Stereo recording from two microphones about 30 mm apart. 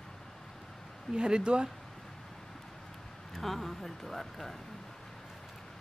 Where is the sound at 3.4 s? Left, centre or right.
Centre.